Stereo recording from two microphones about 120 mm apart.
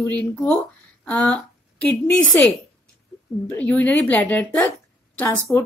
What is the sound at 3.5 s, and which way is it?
A woman's voice, 10° left (ahead or behind).